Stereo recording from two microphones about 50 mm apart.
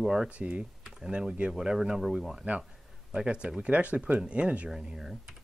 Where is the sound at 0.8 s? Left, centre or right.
Centre.